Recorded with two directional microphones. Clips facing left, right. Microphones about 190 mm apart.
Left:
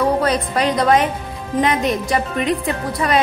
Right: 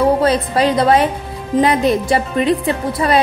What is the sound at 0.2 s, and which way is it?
A woman's voice, 30° right (ahead or behind).